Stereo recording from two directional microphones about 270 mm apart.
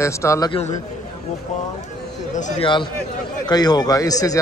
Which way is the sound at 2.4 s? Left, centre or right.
Centre.